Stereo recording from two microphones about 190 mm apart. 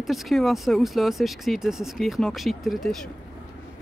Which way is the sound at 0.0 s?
Centre (ahead or behind).